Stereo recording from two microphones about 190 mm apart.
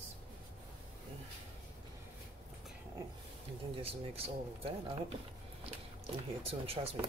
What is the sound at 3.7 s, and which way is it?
Speech, 30° right (ahead or behind).